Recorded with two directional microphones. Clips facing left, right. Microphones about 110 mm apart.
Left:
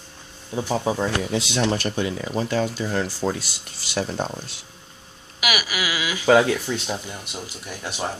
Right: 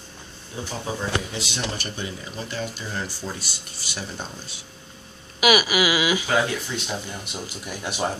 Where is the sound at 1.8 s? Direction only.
90° left.